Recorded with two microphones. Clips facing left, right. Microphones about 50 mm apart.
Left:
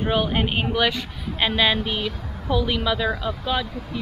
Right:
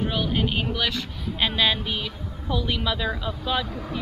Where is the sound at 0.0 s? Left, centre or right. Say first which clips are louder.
Left 3 dB; centre.